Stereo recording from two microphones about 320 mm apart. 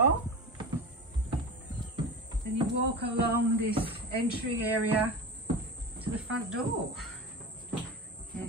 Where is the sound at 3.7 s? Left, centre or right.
Centre.